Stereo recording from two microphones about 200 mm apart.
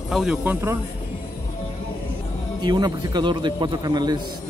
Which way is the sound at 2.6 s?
20° right (ahead or behind).